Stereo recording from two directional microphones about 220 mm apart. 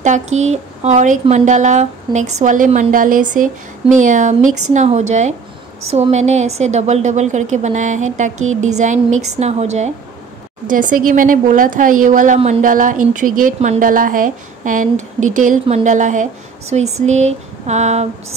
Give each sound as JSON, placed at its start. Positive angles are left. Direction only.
{"t": 0.0, "sound": "speech", "side_deg": -30}